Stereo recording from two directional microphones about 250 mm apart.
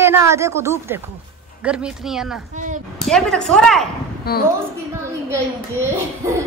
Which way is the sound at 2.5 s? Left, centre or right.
Right.